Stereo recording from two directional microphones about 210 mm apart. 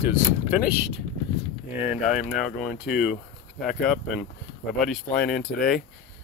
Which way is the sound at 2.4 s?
Centre (ahead or behind).